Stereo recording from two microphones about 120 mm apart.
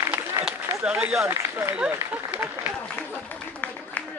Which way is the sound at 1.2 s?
20° right (ahead or behind).